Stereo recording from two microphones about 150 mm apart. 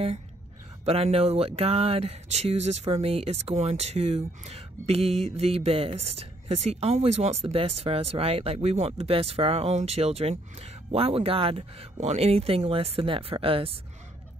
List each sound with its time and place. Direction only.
0.8 s speech: 40° right (ahead or behind)